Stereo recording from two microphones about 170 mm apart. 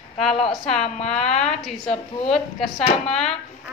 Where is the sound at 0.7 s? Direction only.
40° left (ahead or behind).